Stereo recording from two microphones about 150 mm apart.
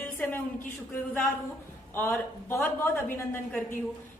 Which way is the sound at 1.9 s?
15° left (ahead or behind).